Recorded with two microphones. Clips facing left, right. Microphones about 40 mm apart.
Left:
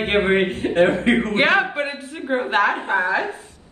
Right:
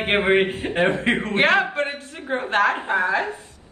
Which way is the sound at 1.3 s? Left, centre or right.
Centre.